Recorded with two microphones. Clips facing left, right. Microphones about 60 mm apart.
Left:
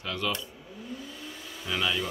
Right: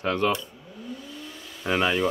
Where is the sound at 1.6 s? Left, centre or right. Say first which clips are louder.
Right 7 dB; right.